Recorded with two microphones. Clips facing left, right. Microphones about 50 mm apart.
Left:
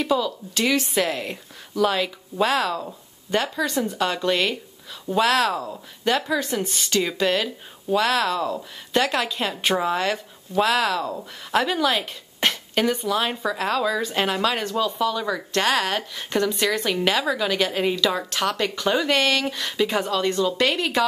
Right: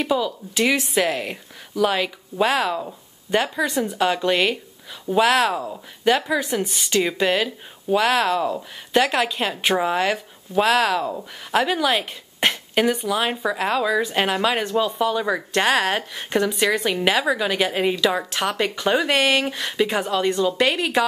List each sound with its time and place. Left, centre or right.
0.1 s a woman's voice: centre